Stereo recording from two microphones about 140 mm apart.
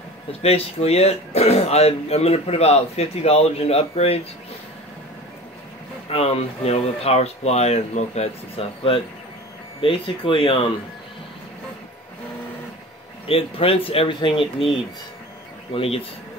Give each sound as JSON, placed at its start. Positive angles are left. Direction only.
{"t": 0.4, "sound": "speech", "side_deg": 45}
{"t": 6.0, "sound": "speech", "side_deg": 45}
{"t": 13.3, "sound": "speech", "side_deg": 40}